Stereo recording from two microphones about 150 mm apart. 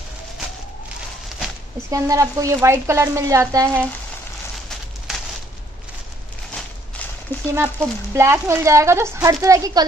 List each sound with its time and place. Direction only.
1.9 s speech: 20° right (ahead or behind)
5.1 s a sound: 5° right (ahead or behind)
7.5 s speech: 15° right (ahead or behind)